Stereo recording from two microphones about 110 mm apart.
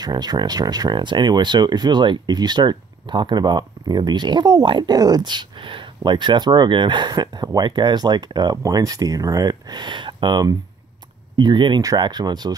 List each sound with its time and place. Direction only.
0.0 s speech: 40° right (ahead or behind)